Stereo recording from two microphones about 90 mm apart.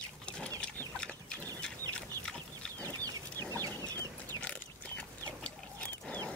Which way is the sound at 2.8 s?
40° right (ahead or behind).